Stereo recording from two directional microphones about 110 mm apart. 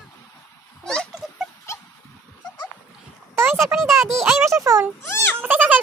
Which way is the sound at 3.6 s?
Centre (ahead or behind).